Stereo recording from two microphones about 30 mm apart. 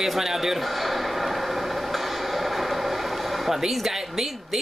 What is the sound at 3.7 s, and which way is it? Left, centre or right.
Speech, centre.